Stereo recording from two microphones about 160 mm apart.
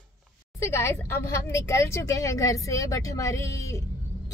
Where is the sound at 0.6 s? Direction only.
15° left (ahead or behind).